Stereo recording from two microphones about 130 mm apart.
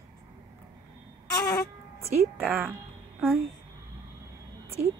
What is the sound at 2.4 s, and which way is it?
Speech, 15° right (ahead or behind).